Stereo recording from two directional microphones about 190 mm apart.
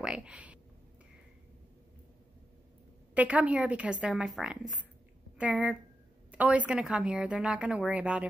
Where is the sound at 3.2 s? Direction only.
5° right (ahead or behind).